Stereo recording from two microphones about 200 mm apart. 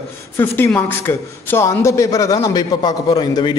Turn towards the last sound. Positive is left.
turn(degrees=25)  # may be behind; listen again after turning